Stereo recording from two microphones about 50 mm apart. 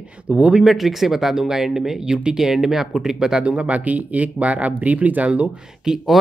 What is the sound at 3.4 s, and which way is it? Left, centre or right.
Speech, right.